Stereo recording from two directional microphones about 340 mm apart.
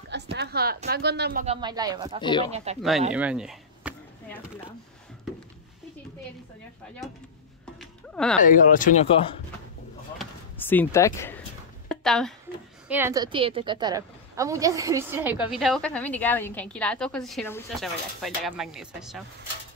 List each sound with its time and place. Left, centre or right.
0.1 s a woman's voice: right
1.4 s speech: centre
2.2 s speech: centre
2.5 s speech: centre
3.1 s a sound: centre
7.8 s a sound: centre
8.4 s speech: left
10.1 s basketball bounce: centre
11.9 s a woman's voice: centre